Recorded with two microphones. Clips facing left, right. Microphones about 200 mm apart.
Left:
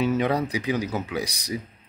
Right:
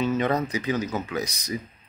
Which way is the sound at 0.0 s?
10° left (ahead or behind).